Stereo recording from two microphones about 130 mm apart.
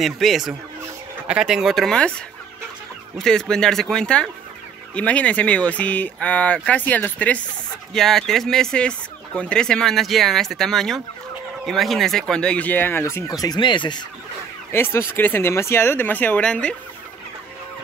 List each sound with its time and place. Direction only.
0.0 s speech: centre (ahead or behind)
3.2 s speech: 5° left (ahead or behind)
13.4 s speech: 35° left (ahead or behind)
14.7 s speech: 20° left (ahead or behind)